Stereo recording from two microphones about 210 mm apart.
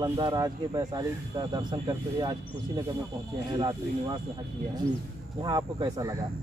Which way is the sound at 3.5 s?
20° right (ahead or behind).